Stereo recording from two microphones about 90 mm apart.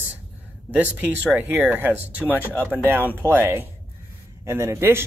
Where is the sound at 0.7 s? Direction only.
20° right (ahead or behind).